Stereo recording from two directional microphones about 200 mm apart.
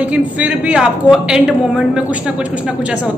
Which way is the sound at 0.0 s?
5° right (ahead or behind).